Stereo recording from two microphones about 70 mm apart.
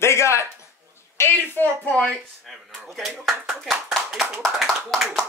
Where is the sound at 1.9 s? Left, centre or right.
Centre.